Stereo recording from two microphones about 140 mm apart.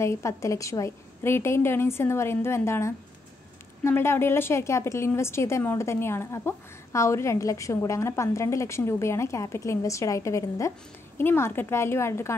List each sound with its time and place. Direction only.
0.0 s a woman's voice: 20° left (ahead or behind)